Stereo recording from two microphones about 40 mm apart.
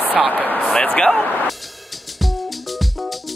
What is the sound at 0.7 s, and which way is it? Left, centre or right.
Speech, centre.